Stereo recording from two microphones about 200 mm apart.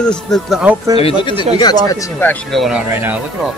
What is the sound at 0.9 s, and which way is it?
Speech, 25° left (ahead or behind).